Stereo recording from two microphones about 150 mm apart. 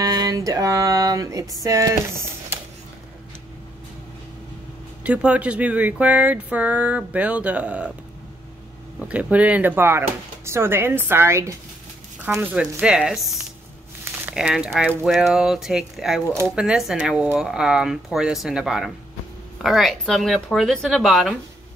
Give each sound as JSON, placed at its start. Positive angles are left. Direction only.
{"t": 0.0, "sound": "a sound", "side_deg": -25}
{"t": 1.6, "sound": "speech", "side_deg": -20}
{"t": 5.0, "sound": "speech", "side_deg": -10}
{"t": 9.0, "sound": "speech", "side_deg": -10}
{"t": 12.4, "sound": "speech", "side_deg": -5}